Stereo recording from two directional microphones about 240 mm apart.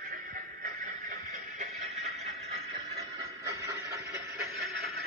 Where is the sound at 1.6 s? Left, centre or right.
Right.